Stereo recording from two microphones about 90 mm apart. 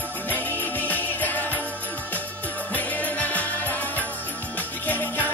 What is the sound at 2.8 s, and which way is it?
Music, 20° left (ahead or behind).